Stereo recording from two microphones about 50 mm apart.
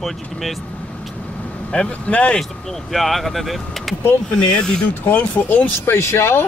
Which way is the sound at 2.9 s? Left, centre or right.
Centre.